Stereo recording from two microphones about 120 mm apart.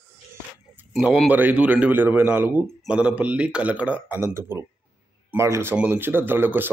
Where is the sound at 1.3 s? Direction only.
15° right (ahead or behind).